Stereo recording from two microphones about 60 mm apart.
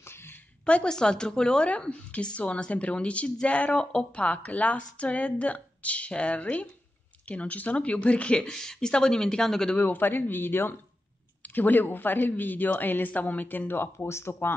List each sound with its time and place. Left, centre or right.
0.0 s a sound: left
0.7 s a woman's voice: centre
9.8 s a woman's voice: left
13.9 s speech: left